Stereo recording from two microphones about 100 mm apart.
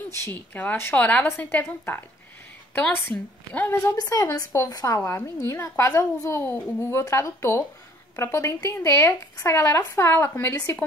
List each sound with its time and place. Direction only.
0.1 s a woman's voice: 25° left (ahead or behind)
3.7 s a woman's voice: 30° left (ahead or behind)